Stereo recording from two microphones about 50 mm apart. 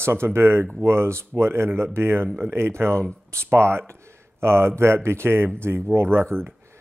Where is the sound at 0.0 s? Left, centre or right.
Right.